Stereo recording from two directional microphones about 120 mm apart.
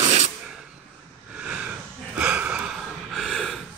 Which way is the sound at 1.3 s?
10° right (ahead or behind).